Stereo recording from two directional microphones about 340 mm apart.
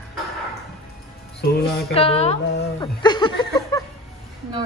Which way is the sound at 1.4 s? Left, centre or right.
Left.